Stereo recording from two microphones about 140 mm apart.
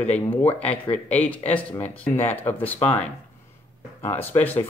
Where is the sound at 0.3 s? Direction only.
10° left (ahead or behind).